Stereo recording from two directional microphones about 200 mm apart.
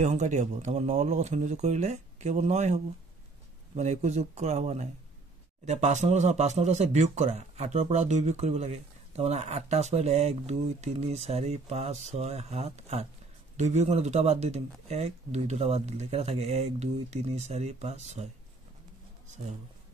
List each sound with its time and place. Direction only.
0.0 s speech: 35° right (ahead or behind)